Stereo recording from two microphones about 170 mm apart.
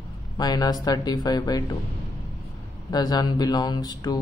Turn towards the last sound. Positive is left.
turn(degrees=25)  # may be behind; listen again after turning